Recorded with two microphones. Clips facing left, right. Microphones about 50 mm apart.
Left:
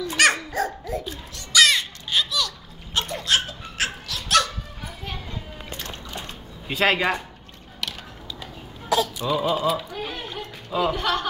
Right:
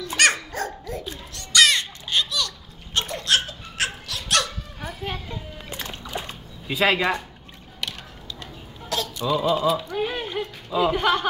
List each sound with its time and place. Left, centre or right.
0.0 s dog: centre
1.3 s babbling: centre
5.3 s splash: centre
6.8 s a man's voice: centre
8.4 s a sound: centre
9.9 s a sound: centre
10.9 s speech: centre